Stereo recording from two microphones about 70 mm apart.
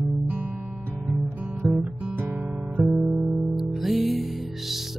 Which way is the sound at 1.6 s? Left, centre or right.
Centre.